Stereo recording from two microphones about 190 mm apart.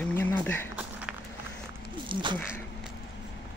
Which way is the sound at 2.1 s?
25° right (ahead or behind).